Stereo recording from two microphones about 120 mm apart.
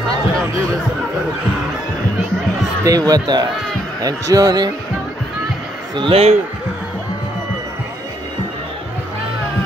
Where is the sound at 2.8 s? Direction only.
30° right (ahead or behind).